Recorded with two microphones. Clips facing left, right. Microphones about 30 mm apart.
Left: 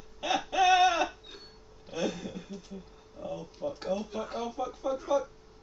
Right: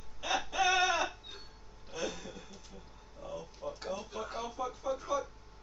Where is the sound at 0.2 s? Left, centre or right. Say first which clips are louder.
Left 5 dB; centre.